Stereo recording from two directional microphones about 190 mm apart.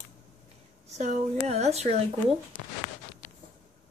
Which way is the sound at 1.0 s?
35° right (ahead or behind).